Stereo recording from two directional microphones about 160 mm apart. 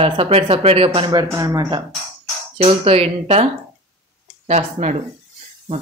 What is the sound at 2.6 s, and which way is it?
Speech, 35° right (ahead or behind).